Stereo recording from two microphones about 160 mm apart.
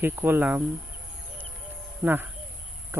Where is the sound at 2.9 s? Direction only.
15° right (ahead or behind).